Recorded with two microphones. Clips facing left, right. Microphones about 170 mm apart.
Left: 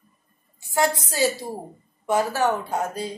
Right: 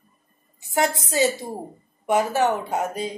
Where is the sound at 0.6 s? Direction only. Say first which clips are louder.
Even; 20° right (ahead or behind).